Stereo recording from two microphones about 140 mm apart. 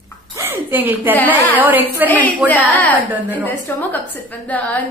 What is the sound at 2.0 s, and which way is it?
Speech, 10° left (ahead or behind).